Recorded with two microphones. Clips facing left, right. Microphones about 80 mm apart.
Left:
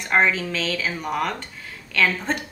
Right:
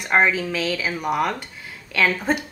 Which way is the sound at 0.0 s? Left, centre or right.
Centre.